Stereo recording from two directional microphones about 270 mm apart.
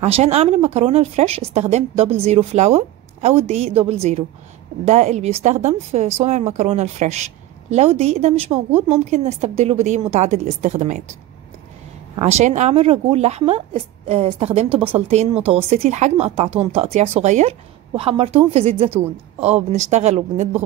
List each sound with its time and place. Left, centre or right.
0.0 s speech: right
12.2 s speech: right